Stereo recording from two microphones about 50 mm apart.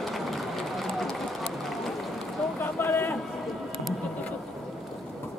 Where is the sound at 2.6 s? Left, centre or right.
Left.